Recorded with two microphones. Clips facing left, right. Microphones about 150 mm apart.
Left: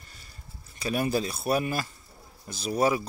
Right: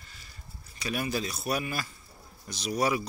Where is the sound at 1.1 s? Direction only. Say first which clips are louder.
Left 5 dB; 30° left (ahead or behind).